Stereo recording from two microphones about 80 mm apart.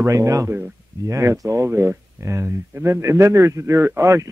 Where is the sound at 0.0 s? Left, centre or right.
Right.